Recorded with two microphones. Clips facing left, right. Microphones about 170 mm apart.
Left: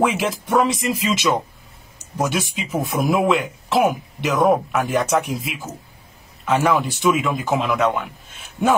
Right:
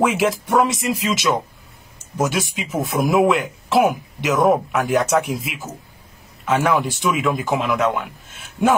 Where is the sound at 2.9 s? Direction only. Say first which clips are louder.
Right 2 dB; 5° left (ahead or behind).